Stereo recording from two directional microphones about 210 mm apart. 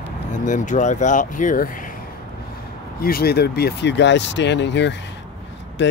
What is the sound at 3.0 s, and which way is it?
Speech, 45° left (ahead or behind).